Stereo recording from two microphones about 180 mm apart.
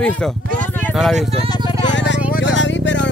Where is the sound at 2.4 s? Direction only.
90° left.